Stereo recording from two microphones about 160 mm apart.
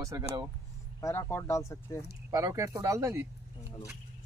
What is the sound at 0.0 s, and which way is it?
Speech, 20° right (ahead or behind).